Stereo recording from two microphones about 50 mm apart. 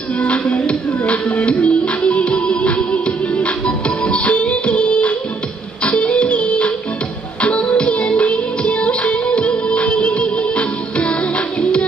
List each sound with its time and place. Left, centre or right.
0.2 s music: left